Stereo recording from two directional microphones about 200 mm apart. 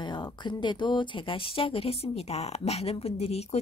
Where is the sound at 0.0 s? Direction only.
20° left (ahead or behind).